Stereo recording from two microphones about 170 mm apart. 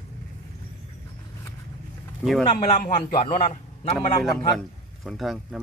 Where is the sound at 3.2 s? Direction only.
35° left (ahead or behind).